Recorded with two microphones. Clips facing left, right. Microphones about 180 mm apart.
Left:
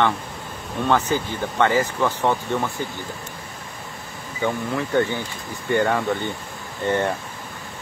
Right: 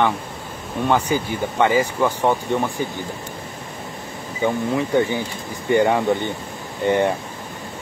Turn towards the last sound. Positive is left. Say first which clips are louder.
# right 4 dB
turn(degrees=-15)  # may be behind; listen again after turning